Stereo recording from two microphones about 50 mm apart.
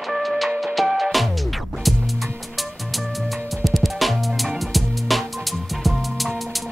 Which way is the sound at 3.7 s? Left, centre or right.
Centre.